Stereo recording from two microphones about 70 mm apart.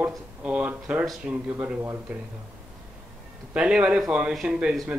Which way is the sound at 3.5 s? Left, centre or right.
Centre.